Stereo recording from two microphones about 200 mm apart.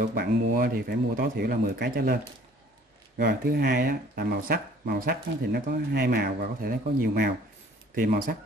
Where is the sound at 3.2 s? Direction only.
50° right (ahead or behind).